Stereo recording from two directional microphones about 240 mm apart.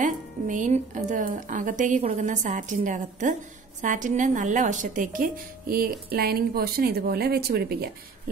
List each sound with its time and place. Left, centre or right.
0.0 s a woman's voice: right